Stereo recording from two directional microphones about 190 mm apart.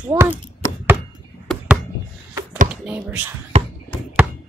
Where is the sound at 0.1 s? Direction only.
15° right (ahead or behind).